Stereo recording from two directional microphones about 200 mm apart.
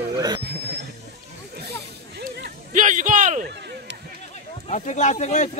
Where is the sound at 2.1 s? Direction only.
50° right (ahead or behind).